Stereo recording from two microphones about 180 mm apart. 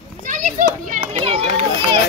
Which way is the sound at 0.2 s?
50° right (ahead or behind).